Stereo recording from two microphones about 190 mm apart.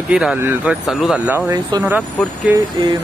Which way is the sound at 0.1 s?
5° right (ahead or behind).